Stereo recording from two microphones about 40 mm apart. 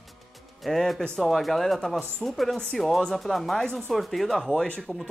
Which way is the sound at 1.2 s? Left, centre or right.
Centre.